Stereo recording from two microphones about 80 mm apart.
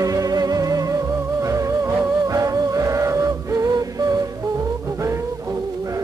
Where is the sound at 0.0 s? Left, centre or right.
Right.